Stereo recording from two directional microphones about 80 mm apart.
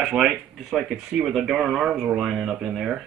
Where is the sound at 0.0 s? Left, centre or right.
Centre.